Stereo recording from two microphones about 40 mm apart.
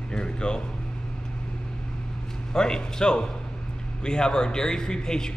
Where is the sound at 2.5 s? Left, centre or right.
Centre.